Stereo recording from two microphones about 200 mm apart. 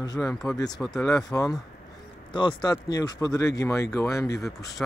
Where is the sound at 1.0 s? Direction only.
20° left (ahead or behind).